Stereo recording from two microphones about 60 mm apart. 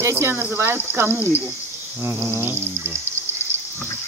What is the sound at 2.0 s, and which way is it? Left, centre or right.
Insect, right.